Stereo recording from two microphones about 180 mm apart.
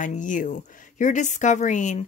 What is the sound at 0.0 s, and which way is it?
Speech, 45° left (ahead or behind).